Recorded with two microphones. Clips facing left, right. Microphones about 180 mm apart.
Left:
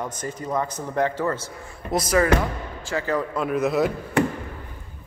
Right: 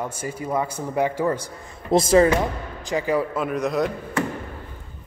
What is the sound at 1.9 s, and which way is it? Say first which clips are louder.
Speech: right 5 dB; 25° right (ahead or behind).